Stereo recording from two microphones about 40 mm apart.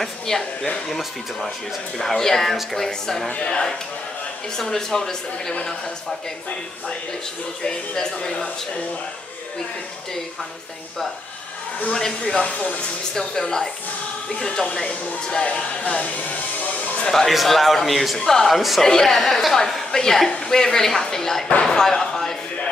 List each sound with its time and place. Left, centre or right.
0.3 s a woman's voice: centre
3.4 s a woman's voice: centre
7.6 s a woman's voice: centre
11.9 s a woman's voice: centre
12.4 s speech: left
13.1 s a woman's voice: centre; by 16.2 s left
16.8 s a sound: left
17.3 s a woman's voice: centre
18.5 s speech: centre
18.8 s a woman's voice: centre
19.1 s speech: centre
19.5 s a woman's voice: centre